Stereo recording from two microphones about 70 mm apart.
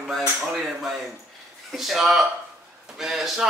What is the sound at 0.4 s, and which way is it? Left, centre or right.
Speech, centre.